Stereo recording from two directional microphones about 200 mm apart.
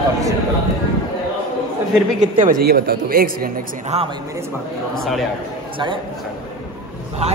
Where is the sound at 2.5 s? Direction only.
50° right (ahead or behind).